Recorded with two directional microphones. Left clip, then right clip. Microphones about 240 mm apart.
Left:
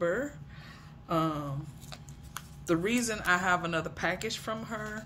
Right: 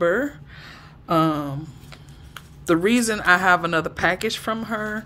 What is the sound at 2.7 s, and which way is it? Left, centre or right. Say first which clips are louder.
Speech: right 10 dB; right.